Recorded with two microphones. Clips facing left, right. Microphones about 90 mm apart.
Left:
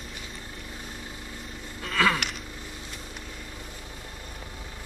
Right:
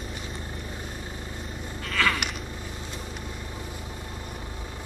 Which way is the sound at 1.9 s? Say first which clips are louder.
Left 2 dB; 10° left (ahead or behind).